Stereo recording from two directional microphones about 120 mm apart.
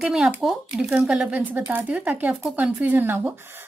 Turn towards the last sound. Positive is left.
turn(degrees=-15)  # may be behind; listen again after turning